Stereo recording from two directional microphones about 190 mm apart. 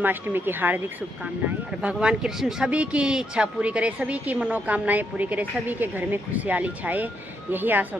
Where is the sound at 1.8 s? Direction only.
5° right (ahead or behind).